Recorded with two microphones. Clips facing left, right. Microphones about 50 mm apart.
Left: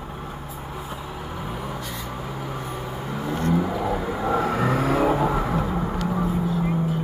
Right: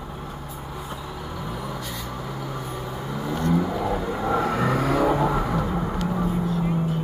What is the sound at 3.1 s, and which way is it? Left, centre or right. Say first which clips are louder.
Vehicle: even; centre.